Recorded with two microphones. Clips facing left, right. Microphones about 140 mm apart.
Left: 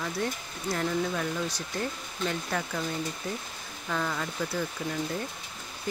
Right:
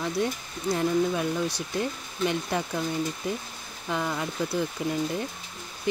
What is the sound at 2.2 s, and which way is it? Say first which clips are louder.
Speech: right 4 dB; 20° right (ahead or behind).